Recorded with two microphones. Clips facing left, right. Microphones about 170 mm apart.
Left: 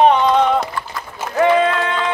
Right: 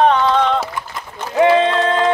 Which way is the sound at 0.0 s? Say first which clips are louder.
Left 1 dB; 15° left (ahead or behind).